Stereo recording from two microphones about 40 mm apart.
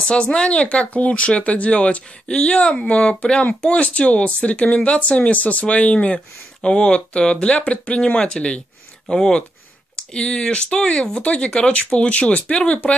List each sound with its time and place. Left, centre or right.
0.1 s speech: left